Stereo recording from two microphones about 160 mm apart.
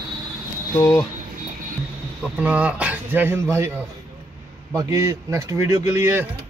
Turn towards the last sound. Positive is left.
turn(degrees=-20)  # may be behind; listen again after turning